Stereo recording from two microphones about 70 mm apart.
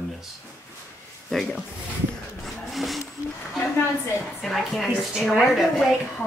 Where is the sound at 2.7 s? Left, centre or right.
Centre.